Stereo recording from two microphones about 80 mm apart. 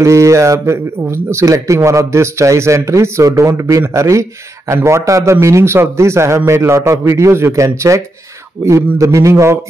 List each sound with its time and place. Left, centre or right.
0.0 s a man's voice: right